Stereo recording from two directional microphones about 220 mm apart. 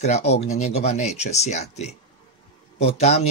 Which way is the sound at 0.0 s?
30° left (ahead or behind).